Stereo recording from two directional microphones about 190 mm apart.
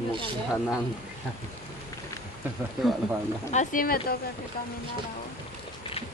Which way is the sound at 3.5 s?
40° left (ahead or behind).